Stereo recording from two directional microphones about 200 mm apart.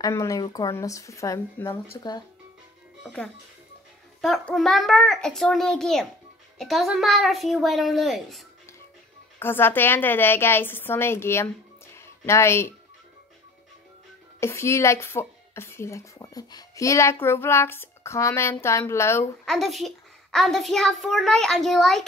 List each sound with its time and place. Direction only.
0.0 s speech: 15° left (ahead or behind)
4.2 s a child's voice: centre (ahead or behind)
9.4 s speech: 10° left (ahead or behind)
14.4 s speech: 15° left (ahead or behind)
19.4 s a child's voice: centre (ahead or behind)